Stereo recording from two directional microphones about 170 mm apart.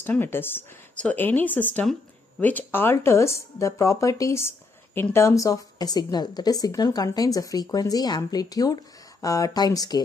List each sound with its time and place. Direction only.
0.0 s speech: 10° left (ahead or behind)